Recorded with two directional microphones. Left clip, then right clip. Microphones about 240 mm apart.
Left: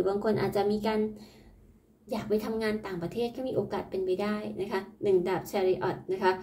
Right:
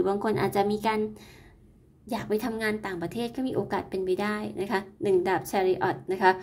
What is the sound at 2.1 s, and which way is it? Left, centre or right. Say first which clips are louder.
A woman's voice: right 1 dB; right.